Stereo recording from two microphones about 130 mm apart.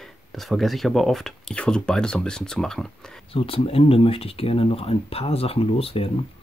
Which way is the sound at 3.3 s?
45° left (ahead or behind).